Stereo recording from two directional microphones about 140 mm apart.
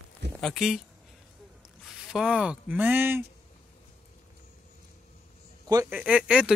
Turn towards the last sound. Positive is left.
turn(degrees=-5)  # may be behind; listen again after turning